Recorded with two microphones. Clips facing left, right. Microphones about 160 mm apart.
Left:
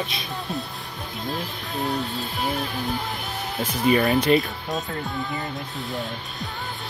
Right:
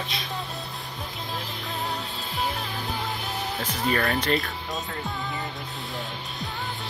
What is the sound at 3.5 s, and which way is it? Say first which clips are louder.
Speech: left 7 dB; 10° left (ahead or behind).